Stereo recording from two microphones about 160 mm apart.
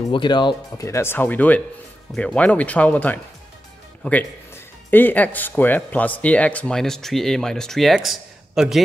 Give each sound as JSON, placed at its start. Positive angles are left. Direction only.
{"t": 0.1, "sound": "speech", "side_deg": 30}
{"t": 0.8, "sound": "speech", "side_deg": 15}